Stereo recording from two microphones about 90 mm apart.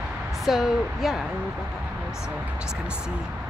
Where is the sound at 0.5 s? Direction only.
Centre (ahead or behind).